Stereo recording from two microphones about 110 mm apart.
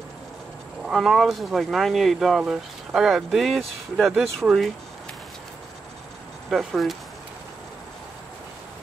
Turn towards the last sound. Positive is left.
turn(degrees=0)  # may be behind; listen again after turning